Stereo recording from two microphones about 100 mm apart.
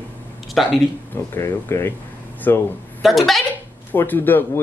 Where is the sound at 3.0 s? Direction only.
Centre (ahead or behind).